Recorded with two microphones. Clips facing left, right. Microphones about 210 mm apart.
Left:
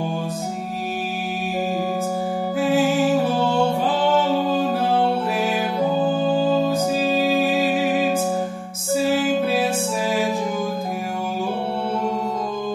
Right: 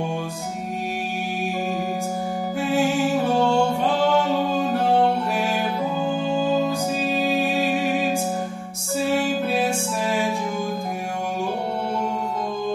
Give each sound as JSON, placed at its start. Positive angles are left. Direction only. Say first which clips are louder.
{"t": 2.6, "sound": "music", "louder": "left 3 dB", "side_deg": 0}
{"t": 6.0, "sound": "music", "louder": "left 3 dB", "side_deg": 35}
{"t": 6.7, "sound": "music", "louder": "left 4 dB", "side_deg": 0}